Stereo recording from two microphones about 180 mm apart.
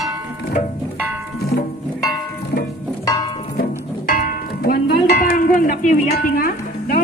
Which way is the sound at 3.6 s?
50° left (ahead or behind).